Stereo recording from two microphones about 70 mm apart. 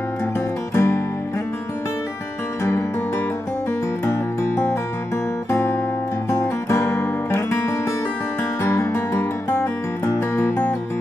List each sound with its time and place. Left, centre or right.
0.7 s music: left
4.0 s music: left
8.8 s music: left
10.3 s music: left